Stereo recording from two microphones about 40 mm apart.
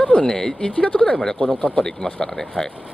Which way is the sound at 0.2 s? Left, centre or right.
Centre.